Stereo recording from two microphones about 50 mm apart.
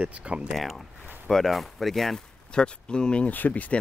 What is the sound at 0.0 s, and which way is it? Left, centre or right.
Speech, right.